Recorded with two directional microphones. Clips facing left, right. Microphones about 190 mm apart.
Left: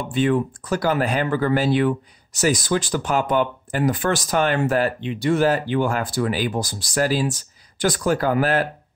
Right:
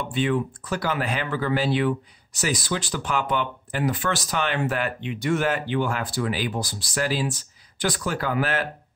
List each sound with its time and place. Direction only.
0.1 s speech: 45° left (ahead or behind)